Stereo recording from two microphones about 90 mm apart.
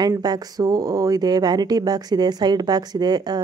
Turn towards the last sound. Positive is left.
turn(degrees=-50)  # may be behind; listen again after turning